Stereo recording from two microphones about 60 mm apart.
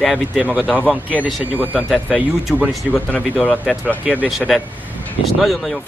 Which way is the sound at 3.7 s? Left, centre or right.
Centre.